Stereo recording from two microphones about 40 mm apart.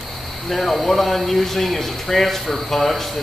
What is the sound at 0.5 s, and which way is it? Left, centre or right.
Speech, centre.